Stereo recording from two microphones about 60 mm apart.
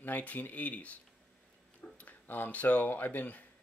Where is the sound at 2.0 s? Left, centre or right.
Left.